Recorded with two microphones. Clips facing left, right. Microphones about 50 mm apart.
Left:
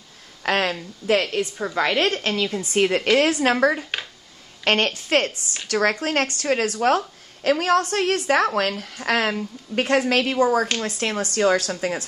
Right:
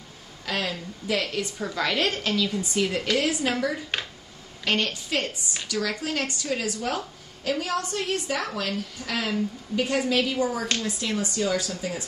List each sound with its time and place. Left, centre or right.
0.4 s speech: left
1.2 s a woman's voice: left
2.6 s a woman's voice: left
5.7 s a woman's voice: left